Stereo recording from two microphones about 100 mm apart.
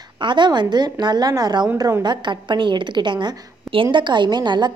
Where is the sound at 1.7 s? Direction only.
30° right (ahead or behind).